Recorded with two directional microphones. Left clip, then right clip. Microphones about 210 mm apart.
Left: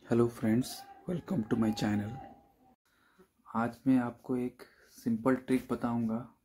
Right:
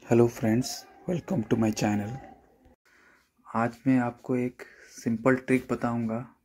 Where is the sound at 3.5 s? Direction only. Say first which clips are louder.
Right 4 dB; 10° right (ahead or behind).